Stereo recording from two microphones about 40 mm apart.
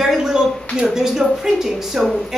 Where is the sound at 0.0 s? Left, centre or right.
Centre.